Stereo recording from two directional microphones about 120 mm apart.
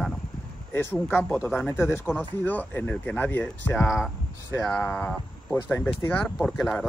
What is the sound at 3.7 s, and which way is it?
Speech, centre (ahead or behind).